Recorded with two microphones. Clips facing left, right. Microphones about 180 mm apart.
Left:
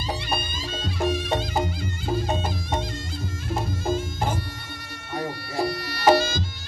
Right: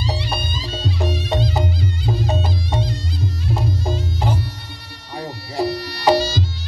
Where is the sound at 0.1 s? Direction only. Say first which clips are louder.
Right 3 dB; 50° left (ahead or behind).